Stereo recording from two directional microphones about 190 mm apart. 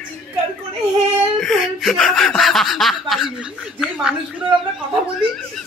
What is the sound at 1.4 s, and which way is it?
Speech, centre (ahead or behind).